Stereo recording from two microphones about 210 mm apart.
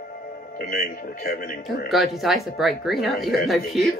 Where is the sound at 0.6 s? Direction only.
45° left (ahead or behind).